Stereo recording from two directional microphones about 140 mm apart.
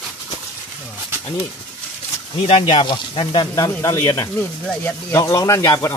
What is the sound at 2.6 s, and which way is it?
Speech, 35° left (ahead or behind).